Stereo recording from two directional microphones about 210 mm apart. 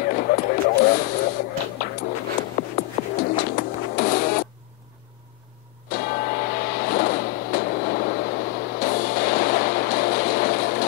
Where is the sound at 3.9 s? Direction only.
45° left (ahead or behind).